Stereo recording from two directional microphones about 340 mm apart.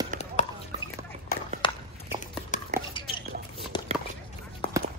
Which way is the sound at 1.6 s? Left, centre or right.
Centre.